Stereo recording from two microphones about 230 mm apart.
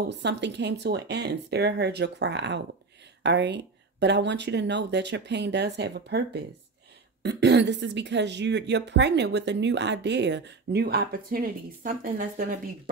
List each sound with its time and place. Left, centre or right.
0.2 s speech: right